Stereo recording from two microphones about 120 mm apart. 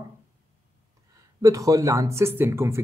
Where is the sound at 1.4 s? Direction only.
30° right (ahead or behind).